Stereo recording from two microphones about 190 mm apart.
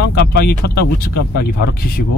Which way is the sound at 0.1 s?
55° left (ahead or behind).